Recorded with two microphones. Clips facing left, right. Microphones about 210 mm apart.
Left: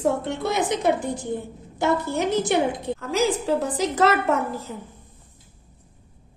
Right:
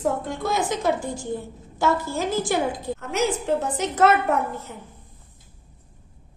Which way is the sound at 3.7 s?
35° left (ahead or behind).